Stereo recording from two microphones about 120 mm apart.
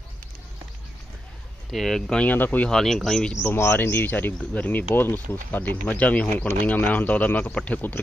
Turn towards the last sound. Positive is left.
turn(degrees=15)  # may be behind; listen again after turning